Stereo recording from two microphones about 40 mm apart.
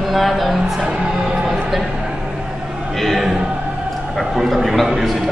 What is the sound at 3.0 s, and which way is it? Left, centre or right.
A man's voice, centre.